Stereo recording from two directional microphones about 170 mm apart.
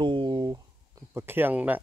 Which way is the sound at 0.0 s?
30° right (ahead or behind).